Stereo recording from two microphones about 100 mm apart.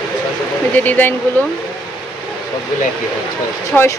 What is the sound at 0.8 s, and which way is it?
Speech, 20° left (ahead or behind).